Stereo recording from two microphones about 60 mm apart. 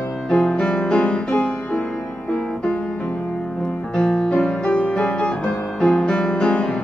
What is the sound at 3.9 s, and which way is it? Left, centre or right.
Music, centre.